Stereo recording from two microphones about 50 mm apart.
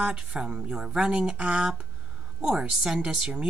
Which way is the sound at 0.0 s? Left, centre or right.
Centre.